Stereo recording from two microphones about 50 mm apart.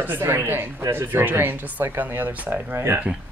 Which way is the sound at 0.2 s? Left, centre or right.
Right.